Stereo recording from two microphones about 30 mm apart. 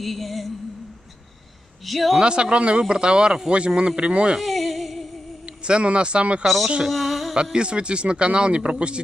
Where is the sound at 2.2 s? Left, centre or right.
Right.